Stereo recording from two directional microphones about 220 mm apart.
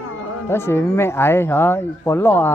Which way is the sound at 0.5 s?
10° left (ahead or behind).